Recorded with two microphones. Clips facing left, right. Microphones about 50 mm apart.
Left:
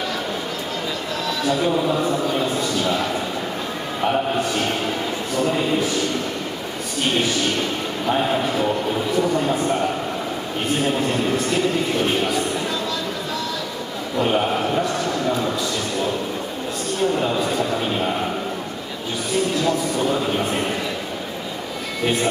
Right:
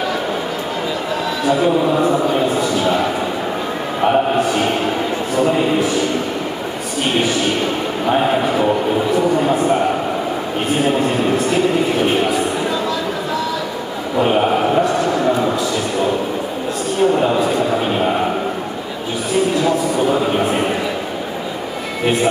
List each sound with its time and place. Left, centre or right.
1.4 s a man's voice: centre
7.2 s a man's voice: centre
14.1 s a sound: centre
17.0 s a man's voice: centre
19.5 s speech: centre
22.0 s speech: centre